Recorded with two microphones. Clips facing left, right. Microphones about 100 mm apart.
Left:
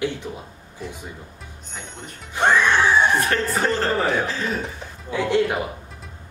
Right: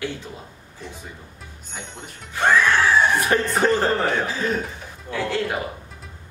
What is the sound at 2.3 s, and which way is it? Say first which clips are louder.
Music: even; 20° left (ahead or behind).